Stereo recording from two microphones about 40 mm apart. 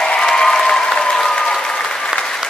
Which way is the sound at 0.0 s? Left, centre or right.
Centre.